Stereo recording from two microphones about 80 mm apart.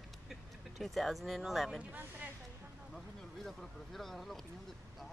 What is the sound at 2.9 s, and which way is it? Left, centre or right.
Speech, centre.